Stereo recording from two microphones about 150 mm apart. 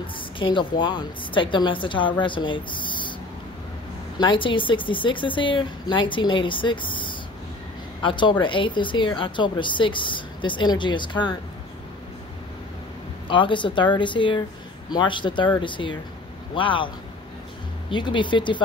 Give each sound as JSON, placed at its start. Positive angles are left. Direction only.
{"t": 0.0, "sound": "speech", "side_deg": 35}
{"t": 4.2, "sound": "speech", "side_deg": 35}
{"t": 13.3, "sound": "speech", "side_deg": 35}